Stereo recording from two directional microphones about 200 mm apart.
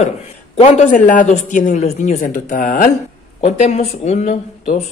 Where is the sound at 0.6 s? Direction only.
35° left (ahead or behind).